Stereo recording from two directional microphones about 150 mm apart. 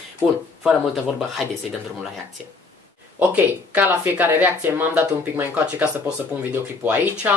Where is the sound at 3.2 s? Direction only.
10° right (ahead or behind).